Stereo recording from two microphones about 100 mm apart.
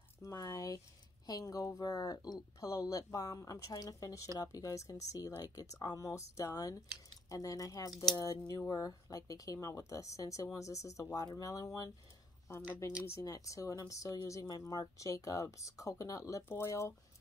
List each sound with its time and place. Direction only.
0.2 s a sound: 35° left (ahead or behind)
1.2 s speech: 40° left (ahead or behind)
7.9 s speech: 5° left (ahead or behind)
8.2 s speech: 40° left (ahead or behind)
13.2 s speech: 35° left (ahead or behind)